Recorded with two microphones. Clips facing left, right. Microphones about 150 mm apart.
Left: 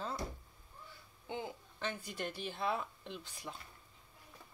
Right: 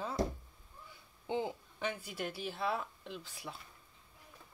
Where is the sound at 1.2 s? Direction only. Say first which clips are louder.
Right 6 dB; 25° right (ahead or behind).